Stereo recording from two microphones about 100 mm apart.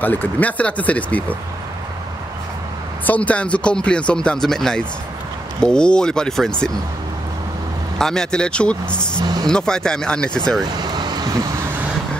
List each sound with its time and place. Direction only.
0.0 s speech: 20° left (ahead or behind)
3.1 s speech: 15° left (ahead or behind)
8.0 s speech: 5° left (ahead or behind)
9.2 s speech: 40° right (ahead or behind)
9.5 s speech: 5° left (ahead or behind)
10.8 s vehicle: 45° right (ahead or behind)